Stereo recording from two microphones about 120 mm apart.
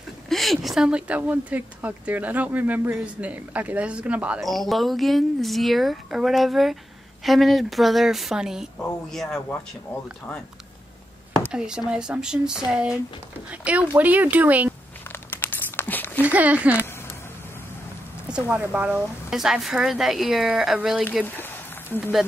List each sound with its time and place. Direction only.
0.3 s a woman's voice: centre (ahead or behind)
4.4 s a woman's voice: centre (ahead or behind)
11.5 s a woman's voice: 5° right (ahead or behind)
15.2 s crumpling: 15° left (ahead or behind)
16.2 s speech: 15° right (ahead or behind)
18.3 s a woman's voice: 10° right (ahead or behind)
21.4 s a sound: 15° left (ahead or behind)